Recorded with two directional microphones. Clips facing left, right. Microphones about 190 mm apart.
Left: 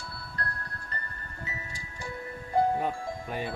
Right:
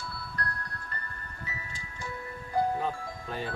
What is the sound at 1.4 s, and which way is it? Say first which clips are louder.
Music: left 2 dB; 25° left (ahead or behind).